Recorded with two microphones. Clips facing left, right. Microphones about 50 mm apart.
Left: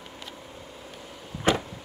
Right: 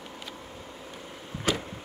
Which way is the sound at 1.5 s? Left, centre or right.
Left.